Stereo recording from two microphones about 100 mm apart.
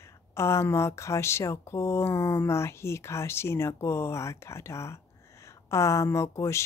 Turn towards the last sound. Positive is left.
turn(degrees=30)  # may be behind; listen again after turning